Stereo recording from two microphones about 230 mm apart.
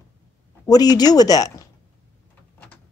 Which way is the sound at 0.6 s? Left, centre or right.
Centre.